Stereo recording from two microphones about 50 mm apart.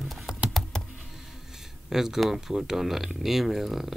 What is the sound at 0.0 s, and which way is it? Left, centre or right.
Typing, centre.